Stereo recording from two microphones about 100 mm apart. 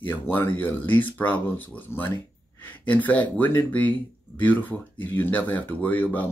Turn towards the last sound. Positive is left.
turn(degrees=15)  # may be behind; listen again after turning